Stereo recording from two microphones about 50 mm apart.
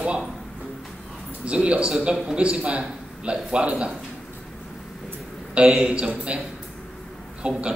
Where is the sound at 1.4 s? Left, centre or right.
Right.